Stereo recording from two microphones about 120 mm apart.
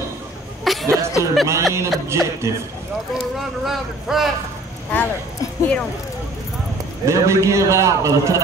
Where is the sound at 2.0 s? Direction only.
25° right (ahead or behind).